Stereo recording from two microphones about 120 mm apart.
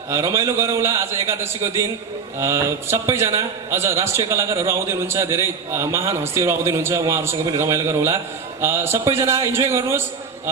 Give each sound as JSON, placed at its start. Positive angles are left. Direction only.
{"t": 0.1, "sound": "a man's voice", "side_deg": -25}